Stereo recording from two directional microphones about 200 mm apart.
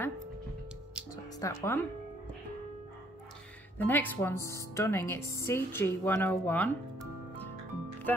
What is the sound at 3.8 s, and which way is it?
Speech, 10° left (ahead or behind).